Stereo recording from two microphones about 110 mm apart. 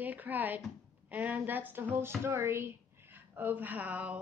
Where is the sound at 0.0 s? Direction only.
15° right (ahead or behind).